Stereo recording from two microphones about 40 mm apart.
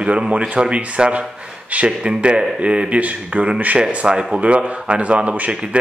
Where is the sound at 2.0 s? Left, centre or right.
Right.